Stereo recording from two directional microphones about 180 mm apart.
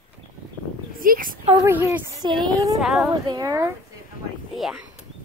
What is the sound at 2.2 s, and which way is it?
Speech, 20° right (ahead or behind).